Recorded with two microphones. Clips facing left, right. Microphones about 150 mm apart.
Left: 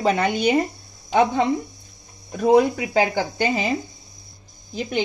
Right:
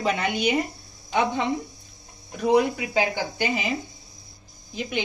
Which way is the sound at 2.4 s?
30° left (ahead or behind).